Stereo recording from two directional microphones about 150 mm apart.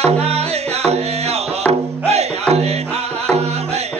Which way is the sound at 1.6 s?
45° right (ahead or behind).